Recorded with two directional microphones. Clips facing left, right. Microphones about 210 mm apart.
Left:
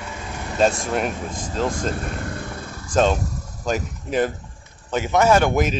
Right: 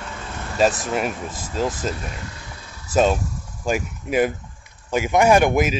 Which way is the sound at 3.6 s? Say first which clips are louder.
Right 1 dB; 10° right (ahead or behind).